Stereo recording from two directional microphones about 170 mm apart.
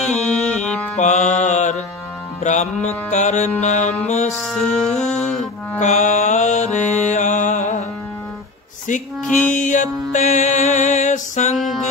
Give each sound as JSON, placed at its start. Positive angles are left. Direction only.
{"t": 0.1, "sound": "music", "side_deg": 5}
{"t": 0.9, "sound": "mantra", "side_deg": 45}
{"t": 4.5, "sound": "music", "side_deg": 5}
{"t": 5.8, "sound": "mantra", "side_deg": 45}
{"t": 9.5, "sound": "music", "side_deg": 50}
{"t": 11.5, "sound": "music", "side_deg": 0}